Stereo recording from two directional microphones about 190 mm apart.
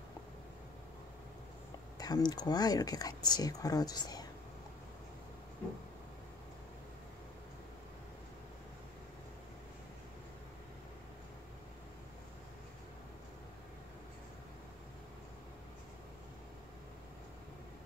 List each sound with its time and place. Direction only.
2.0 s speech: 20° left (ahead or behind)